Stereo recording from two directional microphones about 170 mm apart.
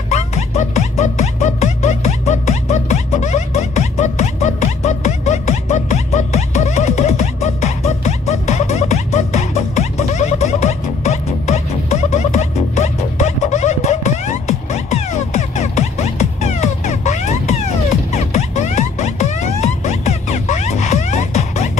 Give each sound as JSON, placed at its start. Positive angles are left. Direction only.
{"t": 0.1, "sound": "music", "side_deg": 40}